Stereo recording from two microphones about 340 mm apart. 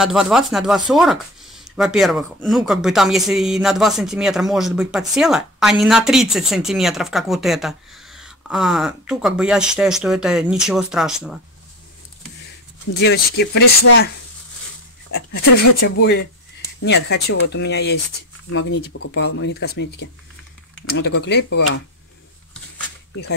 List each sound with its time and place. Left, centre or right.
0.0 s speech: centre
13.0 s speech: left
16.0 s speech: left